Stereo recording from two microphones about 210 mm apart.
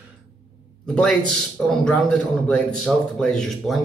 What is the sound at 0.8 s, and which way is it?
Speech, 5° left (ahead or behind).